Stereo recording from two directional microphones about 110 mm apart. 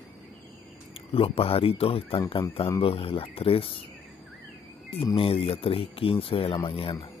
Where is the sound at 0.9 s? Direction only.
60° left (ahead or behind).